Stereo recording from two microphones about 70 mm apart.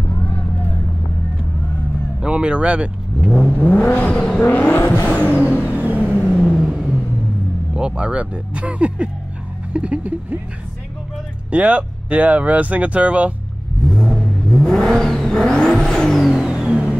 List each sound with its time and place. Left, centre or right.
0.3 s vehicle: left
2.2 s speech: centre
3.5 s vehicle: left
4.7 s vehicle: left
5.0 s vehicle: left
6.2 s vehicle: centre
6.5 s vehicle: centre
7.7 s speech: centre
11.5 s speech: right
13.8 s vehicle: centre